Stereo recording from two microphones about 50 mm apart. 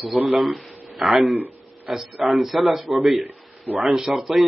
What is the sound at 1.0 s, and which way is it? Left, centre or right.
A man's voice, centre.